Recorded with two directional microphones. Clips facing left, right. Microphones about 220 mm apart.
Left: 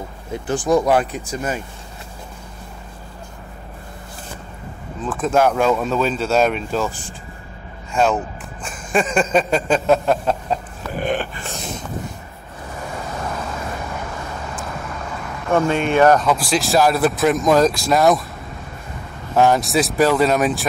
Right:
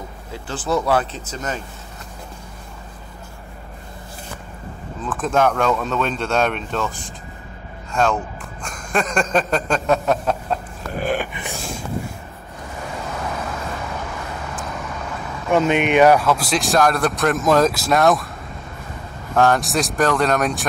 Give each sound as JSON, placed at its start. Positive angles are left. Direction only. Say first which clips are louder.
{"t": 0.3, "sound": "speech", "louder": "left 5 dB", "side_deg": 15}
{"t": 5.0, "sound": "speech", "louder": "left 2 dB", "side_deg": 5}
{"t": 6.9, "sound": "speech", "louder": "even", "side_deg": 35}
{"t": 7.9, "sound": "speech", "louder": "left 2 dB", "side_deg": 5}
{"t": 8.6, "sound": "a sound", "louder": "left 3 dB", "side_deg": 5}
{"t": 15.4, "sound": "speech", "louder": "right 1 dB", "side_deg": -15}
{"t": 16.3, "sound": "speech", "louder": "left 1 dB", "side_deg": 0}
{"t": 19.3, "sound": "speech", "louder": "left 1 dB", "side_deg": 10}
{"t": 19.6, "sound": "speech", "louder": "left 3 dB", "side_deg": 0}